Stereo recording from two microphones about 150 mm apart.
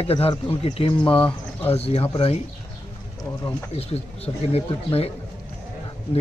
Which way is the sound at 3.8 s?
40° left (ahead or behind).